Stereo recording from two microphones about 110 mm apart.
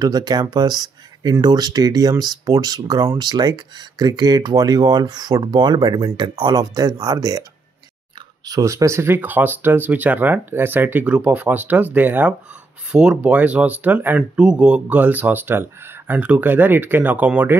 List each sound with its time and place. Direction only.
0.0 s speech: 35° right (ahead or behind)
6.6 s speech: 35° right (ahead or behind)
8.5 s speech: 30° right (ahead or behind); by 17.6 s 15° right (ahead or behind)